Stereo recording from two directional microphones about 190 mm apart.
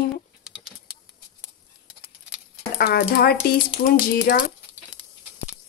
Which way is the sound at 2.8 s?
55° left (ahead or behind).